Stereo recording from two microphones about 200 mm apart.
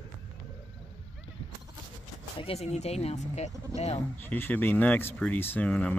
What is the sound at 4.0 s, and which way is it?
Speech, 10° left (ahead or behind).